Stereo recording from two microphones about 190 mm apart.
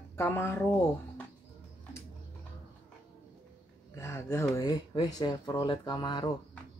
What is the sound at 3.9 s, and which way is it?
Speech, 15° left (ahead or behind).